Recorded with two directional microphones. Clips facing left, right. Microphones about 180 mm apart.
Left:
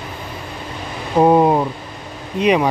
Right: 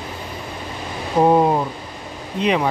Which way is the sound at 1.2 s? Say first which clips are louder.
Left 3 dB; 15° left (ahead or behind).